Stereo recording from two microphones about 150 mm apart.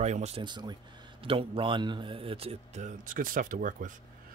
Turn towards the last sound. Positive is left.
turn(degrees=-60)  # may be behind; listen again after turning